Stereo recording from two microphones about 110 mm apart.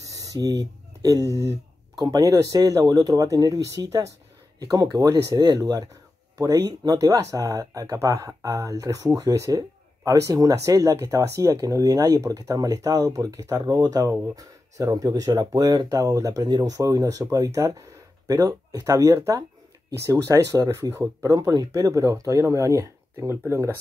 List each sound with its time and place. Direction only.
0.0 s speech: 30° right (ahead or behind)